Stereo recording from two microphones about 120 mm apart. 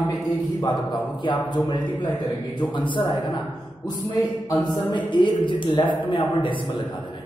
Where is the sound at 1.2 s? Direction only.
40° left (ahead or behind).